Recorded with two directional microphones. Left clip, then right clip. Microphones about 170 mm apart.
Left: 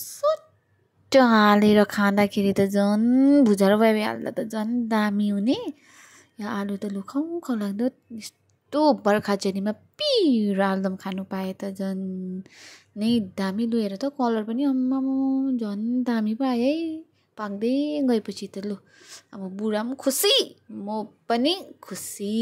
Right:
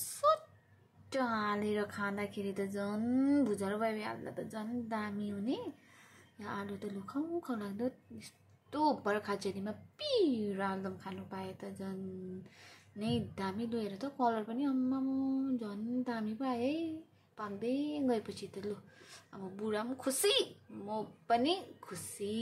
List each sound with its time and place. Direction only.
0.0 s a sound: 20° left (ahead or behind)
1.1 s a woman's voice: 60° left (ahead or behind)
3.0 s speech: 40° left (ahead or behind)
3.4 s a woman's voice: 55° left (ahead or behind)
13.0 s a woman's voice: 45° left (ahead or behind)